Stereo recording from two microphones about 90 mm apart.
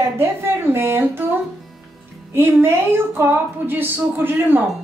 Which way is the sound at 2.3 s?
25° right (ahead or behind).